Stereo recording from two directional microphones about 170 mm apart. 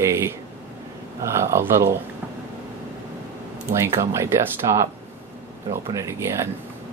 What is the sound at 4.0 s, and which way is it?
Speech, 15° right (ahead or behind).